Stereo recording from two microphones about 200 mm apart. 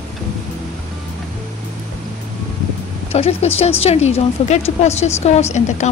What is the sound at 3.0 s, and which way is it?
A woman's voice, 30° left (ahead or behind).